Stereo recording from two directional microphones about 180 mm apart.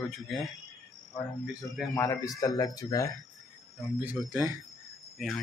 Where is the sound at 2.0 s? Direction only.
20° left (ahead or behind).